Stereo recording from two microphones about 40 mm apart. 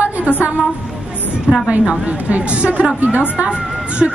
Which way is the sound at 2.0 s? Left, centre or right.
Right.